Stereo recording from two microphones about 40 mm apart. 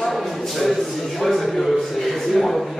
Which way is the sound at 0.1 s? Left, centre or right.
Centre.